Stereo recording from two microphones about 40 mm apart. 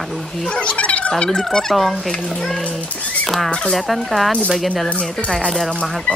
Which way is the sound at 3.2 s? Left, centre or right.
Centre.